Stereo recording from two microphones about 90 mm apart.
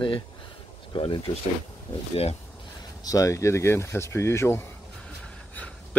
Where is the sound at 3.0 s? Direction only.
40° left (ahead or behind).